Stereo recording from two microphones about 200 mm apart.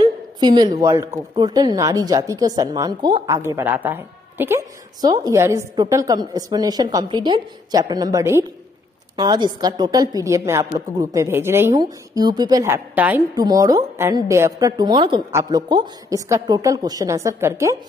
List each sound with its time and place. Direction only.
0.0 s a woman's voice: 20° right (ahead or behind)
13.4 s a woman's voice: 20° right (ahead or behind)